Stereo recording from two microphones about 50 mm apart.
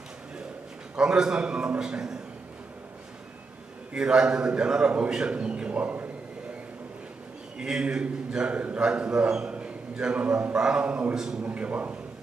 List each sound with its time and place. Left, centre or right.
0.9 s a man's voice: centre
3.9 s a man's voice: centre
7.5 s a man's voice: centre
11.1 s a man's voice: centre
11.4 s a man's voice: right